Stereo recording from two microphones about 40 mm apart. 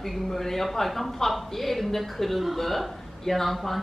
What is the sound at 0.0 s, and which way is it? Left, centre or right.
A woman's voice, centre.